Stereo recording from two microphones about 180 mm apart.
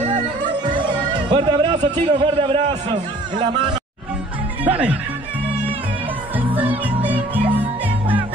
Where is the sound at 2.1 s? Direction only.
30° right (ahead or behind).